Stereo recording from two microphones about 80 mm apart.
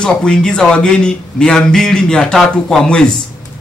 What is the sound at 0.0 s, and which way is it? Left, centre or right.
A man's voice, centre.